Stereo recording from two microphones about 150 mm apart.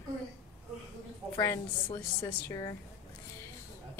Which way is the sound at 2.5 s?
25° left (ahead or behind).